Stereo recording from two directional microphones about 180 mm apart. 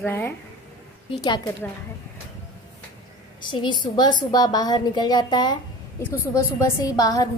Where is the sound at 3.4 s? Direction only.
25° left (ahead or behind).